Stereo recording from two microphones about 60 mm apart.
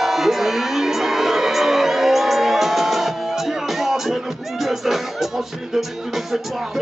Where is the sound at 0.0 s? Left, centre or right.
Centre.